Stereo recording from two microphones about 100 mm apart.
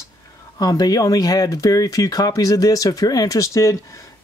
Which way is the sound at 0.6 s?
40° left (ahead or behind).